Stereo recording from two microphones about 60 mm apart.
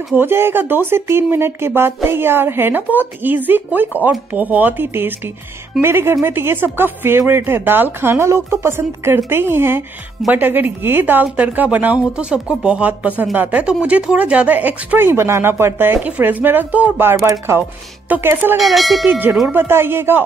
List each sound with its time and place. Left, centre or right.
0.1 s speech: right
15.0 s speech: right
16.0 s speech: right
17.2 s speech: right
17.6 s speech: right
18.6 s speech: centre
19.0 s speech: right